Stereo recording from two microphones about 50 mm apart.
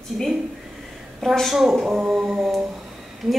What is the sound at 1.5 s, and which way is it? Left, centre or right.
Speech, centre.